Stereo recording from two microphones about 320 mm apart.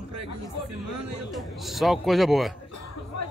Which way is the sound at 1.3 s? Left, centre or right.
Centre.